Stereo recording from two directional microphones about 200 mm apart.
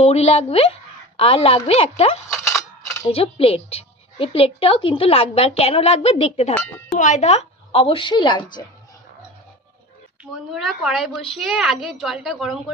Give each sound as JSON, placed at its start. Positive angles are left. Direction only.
{"t": 0.0, "sound": "a woman's voice", "side_deg": 30}
{"t": 6.5, "sound": "speech", "side_deg": 10}
{"t": 7.0, "sound": "a woman's voice", "side_deg": 35}
{"t": 10.5, "sound": "a child's voice", "side_deg": 0}